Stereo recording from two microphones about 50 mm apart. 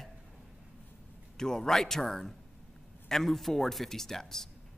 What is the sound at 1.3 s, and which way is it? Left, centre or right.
A man's voice, centre.